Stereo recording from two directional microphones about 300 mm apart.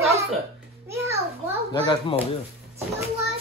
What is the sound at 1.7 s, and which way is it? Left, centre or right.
Speech, centre.